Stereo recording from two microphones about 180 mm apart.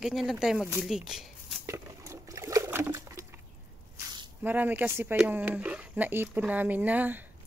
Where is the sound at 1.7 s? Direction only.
15° right (ahead or behind).